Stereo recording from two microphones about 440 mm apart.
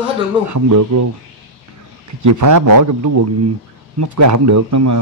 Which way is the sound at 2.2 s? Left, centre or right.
Right.